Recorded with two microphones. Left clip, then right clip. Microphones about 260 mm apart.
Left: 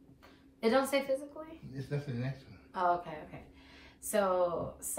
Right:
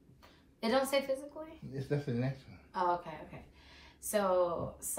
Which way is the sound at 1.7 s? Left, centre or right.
Right.